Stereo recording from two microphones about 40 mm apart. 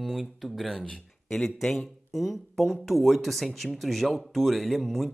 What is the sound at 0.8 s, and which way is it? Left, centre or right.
Speech, centre.